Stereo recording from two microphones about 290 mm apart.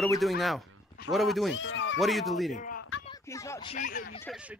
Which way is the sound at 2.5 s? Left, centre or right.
Left.